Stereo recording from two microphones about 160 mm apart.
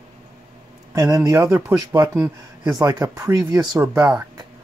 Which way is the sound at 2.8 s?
20° right (ahead or behind).